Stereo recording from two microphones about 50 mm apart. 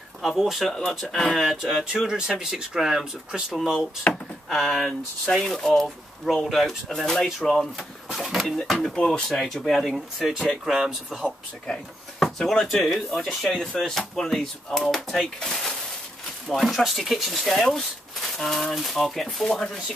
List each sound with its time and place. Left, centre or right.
0.2 s speech: centre
1.1 s speech: centre
1.4 s speech: centre
2.0 s speech: centre
4.1 s speech: centre
6.2 s speech: centre
8.1 s speech: centre
8.4 s speech: centre
9.9 s speech: centre
11.2 s speech: centre
12.2 s a sound: centre
12.7 s speech: centre